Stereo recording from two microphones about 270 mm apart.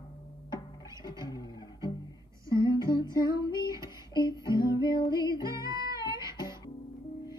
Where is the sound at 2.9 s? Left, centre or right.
Centre.